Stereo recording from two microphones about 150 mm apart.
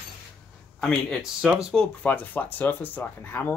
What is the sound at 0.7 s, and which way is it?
Speech, 5° left (ahead or behind).